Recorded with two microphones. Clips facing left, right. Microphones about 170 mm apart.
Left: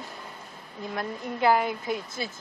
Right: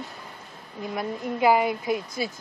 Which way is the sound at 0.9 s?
5° right (ahead or behind).